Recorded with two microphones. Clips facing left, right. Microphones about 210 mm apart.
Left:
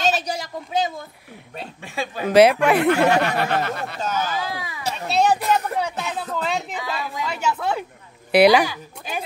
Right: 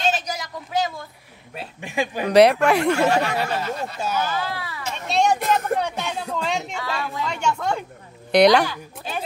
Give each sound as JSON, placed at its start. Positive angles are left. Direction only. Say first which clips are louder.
{"t": 0.0, "sound": "a sound", "louder": "left 2 dB", "side_deg": 30}
{"t": 1.8, "sound": "speech", "louder": "right 4 dB", "side_deg": -15}
{"t": 2.2, "sound": "a woman's voice", "louder": "left 1 dB", "side_deg": 0}
{"t": 3.3, "sound": "speech", "louder": "left 2 dB", "side_deg": 60}
{"t": 4.0, "sound": "speech", "louder": "even", "side_deg": -10}
{"t": 4.3, "sound": "speech", "louder": "even", "side_deg": 15}
{"t": 4.9, "sound": "a woman's voice", "louder": "left 1 dB", "side_deg": 0}